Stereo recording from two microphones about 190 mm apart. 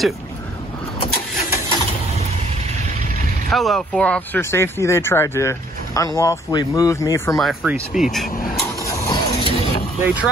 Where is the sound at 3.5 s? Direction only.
Centre (ahead or behind); by 7.4 s 15° left (ahead or behind).